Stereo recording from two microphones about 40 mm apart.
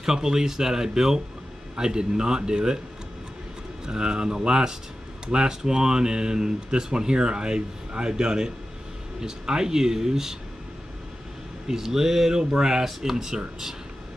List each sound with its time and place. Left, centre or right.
0.0 s speech: centre
3.8 s speech: right
11.6 s speech: centre